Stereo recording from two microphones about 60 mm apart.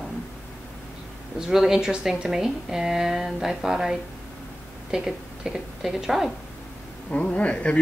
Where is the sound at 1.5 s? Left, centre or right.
Centre.